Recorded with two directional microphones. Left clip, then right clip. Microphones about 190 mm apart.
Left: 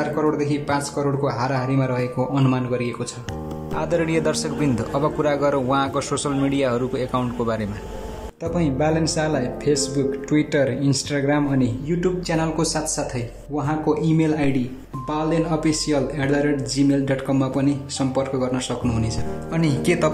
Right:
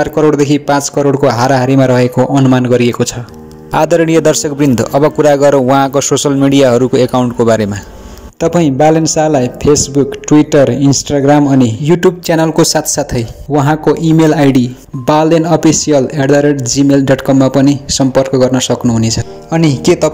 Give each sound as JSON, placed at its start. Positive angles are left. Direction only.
{"t": 0.0, "sound": "speech", "side_deg": -40}